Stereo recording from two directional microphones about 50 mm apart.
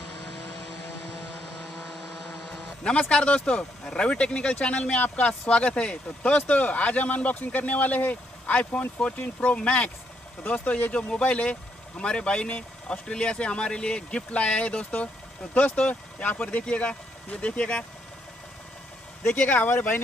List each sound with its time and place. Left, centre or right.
2.5 s speech: left
19.2 s speech: left